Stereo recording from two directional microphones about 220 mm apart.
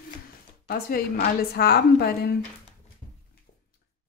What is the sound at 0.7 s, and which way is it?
Speech, 40° left (ahead or behind).